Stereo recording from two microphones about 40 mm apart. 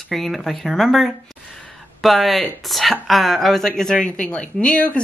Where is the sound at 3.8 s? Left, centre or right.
Centre.